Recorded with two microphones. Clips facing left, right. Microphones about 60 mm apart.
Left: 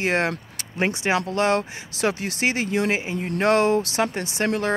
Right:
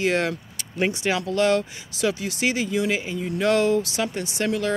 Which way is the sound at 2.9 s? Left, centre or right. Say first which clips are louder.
Left 1 dB; left.